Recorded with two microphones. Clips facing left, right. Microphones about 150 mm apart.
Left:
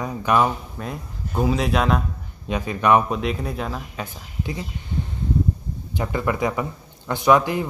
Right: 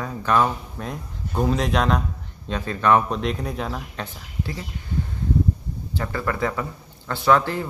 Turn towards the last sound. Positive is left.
turn(degrees=15)  # may be behind; listen again after turning